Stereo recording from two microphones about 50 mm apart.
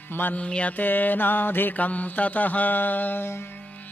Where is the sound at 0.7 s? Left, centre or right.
Left.